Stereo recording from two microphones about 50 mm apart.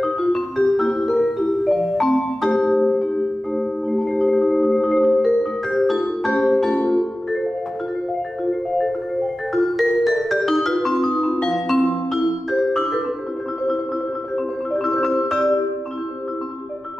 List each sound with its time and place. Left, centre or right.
0.0 s music: centre
8.5 s music: centre
14.3 s music: centre